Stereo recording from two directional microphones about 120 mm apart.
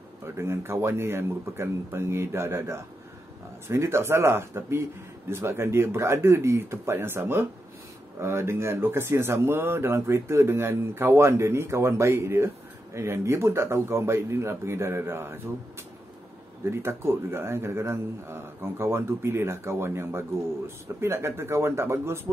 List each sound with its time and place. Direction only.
0.2 s a man's voice: 20° right (ahead or behind)
16.7 s a man's voice: 20° right (ahead or behind)